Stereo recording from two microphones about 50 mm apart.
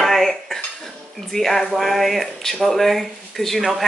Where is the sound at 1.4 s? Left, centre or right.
Centre.